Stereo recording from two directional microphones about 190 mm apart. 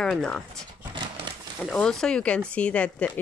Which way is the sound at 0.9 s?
25° right (ahead or behind).